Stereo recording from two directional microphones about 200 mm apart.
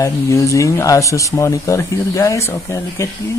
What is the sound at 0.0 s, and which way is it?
Speech, 15° left (ahead or behind).